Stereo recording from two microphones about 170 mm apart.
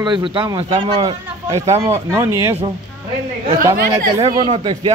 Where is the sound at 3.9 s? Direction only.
25° right (ahead or behind).